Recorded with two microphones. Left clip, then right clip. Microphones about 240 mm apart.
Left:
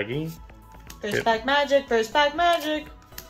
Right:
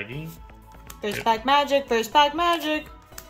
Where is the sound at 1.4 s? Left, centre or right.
Right.